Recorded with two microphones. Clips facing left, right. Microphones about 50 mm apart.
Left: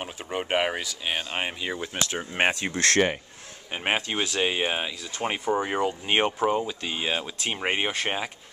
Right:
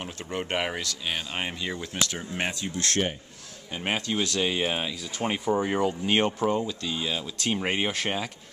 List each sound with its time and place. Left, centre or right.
0.0 s speech: centre
2.0 s speech: left
2.4 s speech: left
3.7 s speech: left
7.4 s speech: centre